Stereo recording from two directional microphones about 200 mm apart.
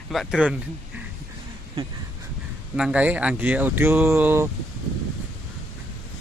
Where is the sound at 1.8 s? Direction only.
25° right (ahead or behind).